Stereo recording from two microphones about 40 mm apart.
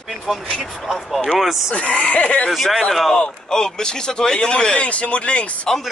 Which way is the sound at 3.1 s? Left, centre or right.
Centre.